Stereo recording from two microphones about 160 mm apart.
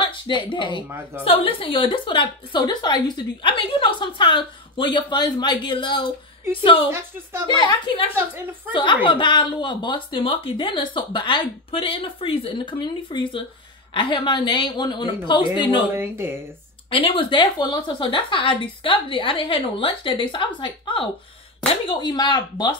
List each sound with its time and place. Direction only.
0.0 s speech: 30° left (ahead or behind)
0.8 s a woman's voice: 15° right (ahead or behind)
1.2 s a woman's voice: 35° left (ahead or behind)
6.9 s a woman's voice: 15° right (ahead or behind)
7.4 s a woman's voice: 30° left (ahead or behind)
16.0 s a woman's voice: 15° right (ahead or behind)
16.9 s a woman's voice: 35° left (ahead or behind)